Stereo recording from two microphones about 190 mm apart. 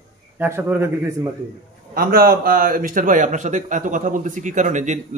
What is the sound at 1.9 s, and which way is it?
Speech, 50° right (ahead or behind).